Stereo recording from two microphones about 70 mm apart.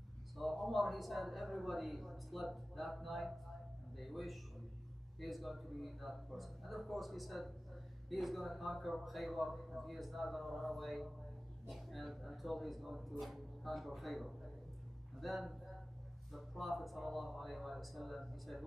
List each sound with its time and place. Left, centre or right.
0.4 s a man's voice: centre